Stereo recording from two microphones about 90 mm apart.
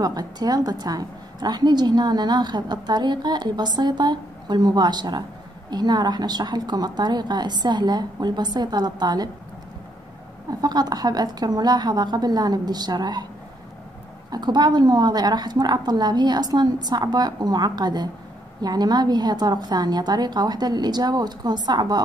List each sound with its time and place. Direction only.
0.0 s a woman's voice: 45° right (ahead or behind)
10.6 s a woman's voice: 50° right (ahead or behind)
14.3 s a woman's voice: 50° right (ahead or behind)